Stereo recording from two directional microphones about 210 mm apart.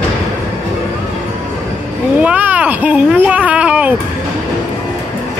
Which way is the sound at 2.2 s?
5° right (ahead or behind).